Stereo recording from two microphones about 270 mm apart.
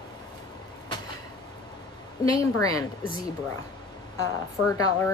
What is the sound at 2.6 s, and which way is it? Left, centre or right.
Speech, centre.